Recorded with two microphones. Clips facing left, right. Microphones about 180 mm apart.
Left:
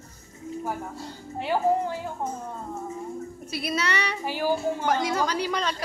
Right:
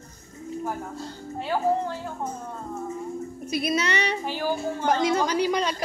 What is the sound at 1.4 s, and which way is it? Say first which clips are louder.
Speech: left 1 dB; 15° left (ahead or behind).